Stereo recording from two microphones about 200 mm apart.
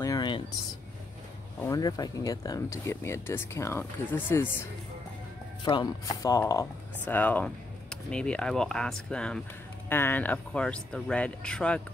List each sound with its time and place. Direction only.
0.0 s a sound: 20° left (ahead or behind)
1.6 s speech: 15° left (ahead or behind)
5.6 s speech: 20° left (ahead or behind); by 11.8 s 5° left (ahead or behind)